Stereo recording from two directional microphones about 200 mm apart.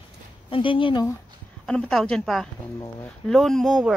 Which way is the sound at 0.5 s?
25° left (ahead or behind).